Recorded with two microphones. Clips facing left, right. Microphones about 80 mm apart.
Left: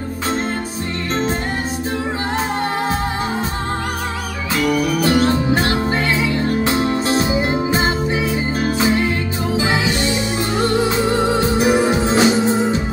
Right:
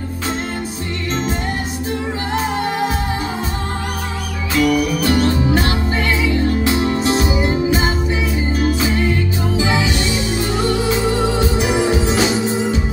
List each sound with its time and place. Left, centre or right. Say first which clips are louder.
5.0 s music: left 1 dB; left